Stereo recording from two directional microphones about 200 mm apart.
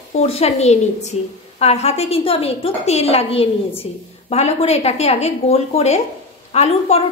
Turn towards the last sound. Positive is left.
turn(degrees=30)  # may be behind; listen again after turning